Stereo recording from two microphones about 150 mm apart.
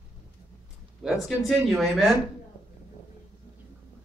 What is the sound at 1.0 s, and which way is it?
A man's voice, centre (ahead or behind).